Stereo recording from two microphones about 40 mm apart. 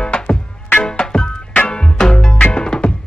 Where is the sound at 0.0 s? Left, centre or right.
Left.